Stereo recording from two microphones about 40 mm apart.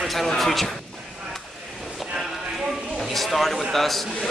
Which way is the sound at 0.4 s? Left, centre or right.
Centre.